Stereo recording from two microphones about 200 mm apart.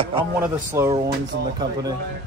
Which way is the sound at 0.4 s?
15° right (ahead or behind).